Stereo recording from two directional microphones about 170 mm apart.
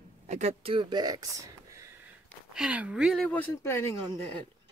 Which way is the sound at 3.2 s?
10° left (ahead or behind).